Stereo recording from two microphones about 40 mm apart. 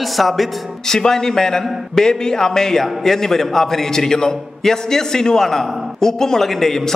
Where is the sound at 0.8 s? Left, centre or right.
Centre.